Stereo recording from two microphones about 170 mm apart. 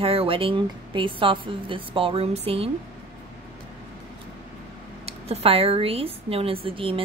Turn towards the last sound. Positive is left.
turn(degrees=-30)  # may be behind; listen again after turning